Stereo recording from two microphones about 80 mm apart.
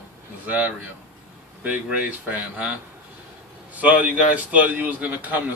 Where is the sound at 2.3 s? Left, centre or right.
Centre.